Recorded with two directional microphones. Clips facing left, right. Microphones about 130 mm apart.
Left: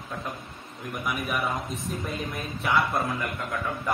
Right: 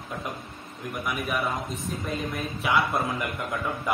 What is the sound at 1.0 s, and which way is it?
Speech, centre (ahead or behind).